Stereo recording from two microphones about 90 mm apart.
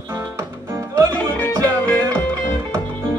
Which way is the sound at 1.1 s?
15° left (ahead or behind).